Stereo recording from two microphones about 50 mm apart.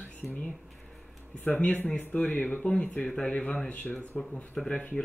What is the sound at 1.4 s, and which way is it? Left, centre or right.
Speech, left.